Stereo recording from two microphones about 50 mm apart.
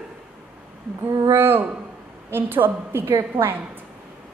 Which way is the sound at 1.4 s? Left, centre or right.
Right.